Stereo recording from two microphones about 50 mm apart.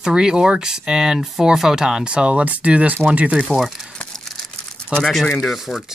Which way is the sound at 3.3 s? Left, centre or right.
Centre.